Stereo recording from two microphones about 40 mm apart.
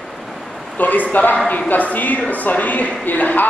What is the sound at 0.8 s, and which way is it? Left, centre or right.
Speech, left.